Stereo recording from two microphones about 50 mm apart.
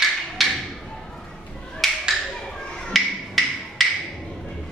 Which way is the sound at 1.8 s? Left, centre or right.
Centre.